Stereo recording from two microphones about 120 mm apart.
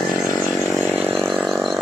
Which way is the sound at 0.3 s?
30° left (ahead or behind).